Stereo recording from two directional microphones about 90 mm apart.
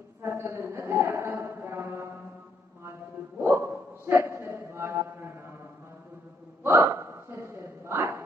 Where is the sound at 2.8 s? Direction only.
30° right (ahead or behind).